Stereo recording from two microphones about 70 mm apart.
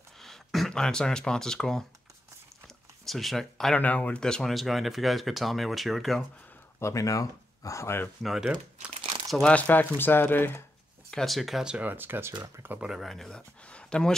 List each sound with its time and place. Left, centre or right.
0.2 s speech: centre
3.1 s speech: centre
3.7 s speech: left
4.2 s speech: centre
6.8 s speech: left
8.2 s speech: centre
9.4 s speech: centre
11.1 s speech: centre
11.7 s speech: right
13.0 s speech: centre
13.7 s a sound: centre